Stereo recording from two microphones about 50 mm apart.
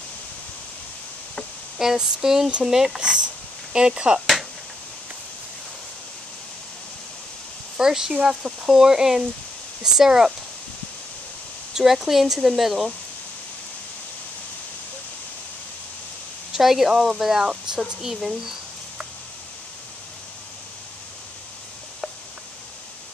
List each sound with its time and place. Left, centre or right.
1.8 s speech: centre
7.7 s speech: centre
11.7 s speech: centre
16.5 s speech: centre